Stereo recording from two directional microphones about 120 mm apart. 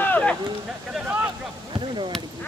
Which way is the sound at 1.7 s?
45° right (ahead or behind).